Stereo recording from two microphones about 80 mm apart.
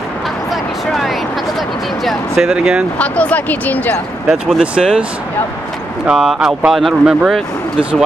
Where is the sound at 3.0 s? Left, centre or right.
Centre.